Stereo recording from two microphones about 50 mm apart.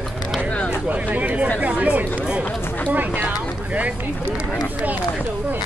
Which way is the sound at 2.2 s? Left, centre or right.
Right.